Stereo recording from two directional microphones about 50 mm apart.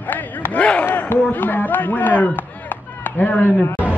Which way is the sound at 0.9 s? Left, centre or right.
Left.